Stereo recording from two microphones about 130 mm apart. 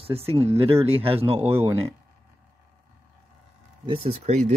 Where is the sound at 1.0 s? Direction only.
45° right (ahead or behind).